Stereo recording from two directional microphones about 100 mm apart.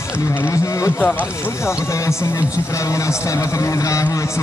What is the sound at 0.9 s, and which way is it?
Speech, 20° left (ahead or behind).